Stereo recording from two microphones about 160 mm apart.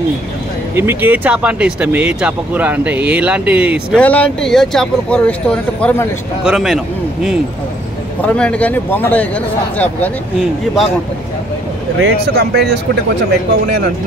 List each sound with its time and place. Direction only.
0.7 s speech: 15° right (ahead or behind)
3.9 s speech: 10° left (ahead or behind)
6.4 s speech: 5° right (ahead or behind)
8.3 s speech: 10° left (ahead or behind)
12.0 s speech: 90° right